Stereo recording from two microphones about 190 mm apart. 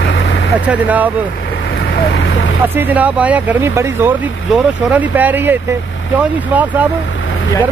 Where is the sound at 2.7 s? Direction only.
10° right (ahead or behind).